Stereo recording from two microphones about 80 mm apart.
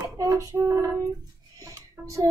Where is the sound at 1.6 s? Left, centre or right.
Right.